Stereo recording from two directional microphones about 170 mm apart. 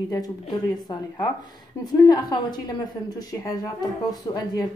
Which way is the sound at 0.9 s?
25° left (ahead or behind).